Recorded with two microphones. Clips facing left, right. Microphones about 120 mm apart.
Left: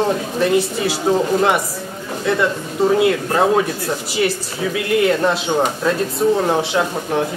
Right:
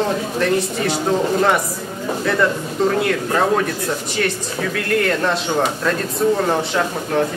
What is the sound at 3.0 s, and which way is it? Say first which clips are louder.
A man's voice: left 2 dB; 10° left (ahead or behind).